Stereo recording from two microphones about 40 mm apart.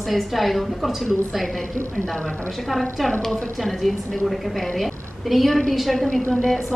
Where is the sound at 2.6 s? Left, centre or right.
Centre.